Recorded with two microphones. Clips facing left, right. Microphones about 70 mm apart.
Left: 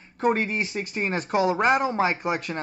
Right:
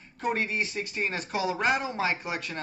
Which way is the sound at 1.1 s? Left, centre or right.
Left.